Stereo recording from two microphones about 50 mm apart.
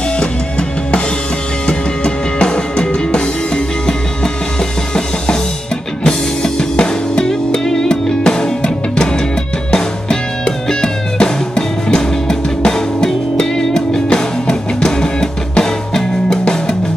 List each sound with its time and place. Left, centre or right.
0.2 s drum kit: centre
1.7 s music: centre